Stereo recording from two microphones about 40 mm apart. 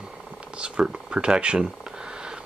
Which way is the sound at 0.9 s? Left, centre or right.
Right.